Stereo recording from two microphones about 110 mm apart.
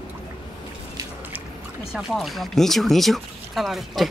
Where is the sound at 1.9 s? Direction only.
5° right (ahead or behind).